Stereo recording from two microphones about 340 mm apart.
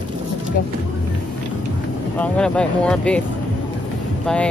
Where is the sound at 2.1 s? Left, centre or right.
Centre.